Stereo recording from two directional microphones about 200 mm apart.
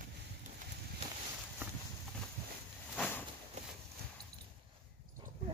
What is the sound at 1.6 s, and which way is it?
Clip-clop, 10° right (ahead or behind).